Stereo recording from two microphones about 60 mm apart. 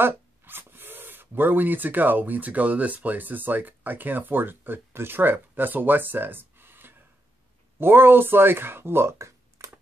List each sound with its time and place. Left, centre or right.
0.0 s speech: right